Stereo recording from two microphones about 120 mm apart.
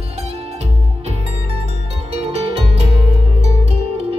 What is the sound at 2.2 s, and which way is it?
Music, 60° right (ahead or behind).